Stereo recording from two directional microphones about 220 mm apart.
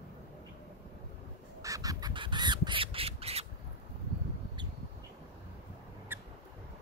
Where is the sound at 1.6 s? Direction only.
15° right (ahead or behind).